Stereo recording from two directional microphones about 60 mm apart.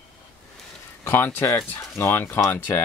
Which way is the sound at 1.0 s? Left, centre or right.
Left.